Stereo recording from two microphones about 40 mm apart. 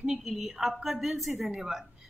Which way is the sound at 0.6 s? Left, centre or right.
Centre.